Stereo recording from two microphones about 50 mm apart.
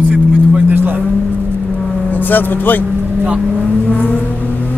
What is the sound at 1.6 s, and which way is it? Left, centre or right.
Vehicle, left.